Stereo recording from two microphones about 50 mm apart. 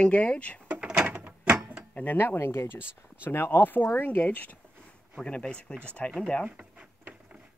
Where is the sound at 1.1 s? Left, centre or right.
Right.